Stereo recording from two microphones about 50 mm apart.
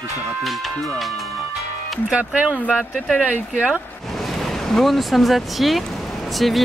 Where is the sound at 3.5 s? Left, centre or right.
Centre.